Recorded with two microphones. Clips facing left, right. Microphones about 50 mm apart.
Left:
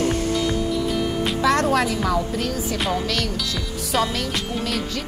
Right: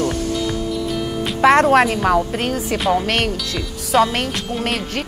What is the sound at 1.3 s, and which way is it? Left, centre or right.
Speech, right.